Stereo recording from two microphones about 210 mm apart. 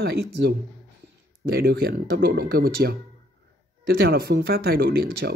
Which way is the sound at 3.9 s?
50° right (ahead or behind).